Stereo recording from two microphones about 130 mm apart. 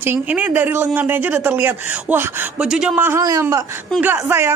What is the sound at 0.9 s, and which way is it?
A man's voice, 15° right (ahead or behind).